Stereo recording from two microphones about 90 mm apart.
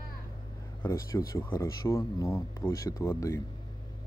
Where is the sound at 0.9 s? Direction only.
40° left (ahead or behind).